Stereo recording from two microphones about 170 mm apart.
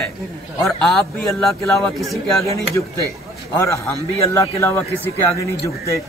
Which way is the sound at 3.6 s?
15° left (ahead or behind).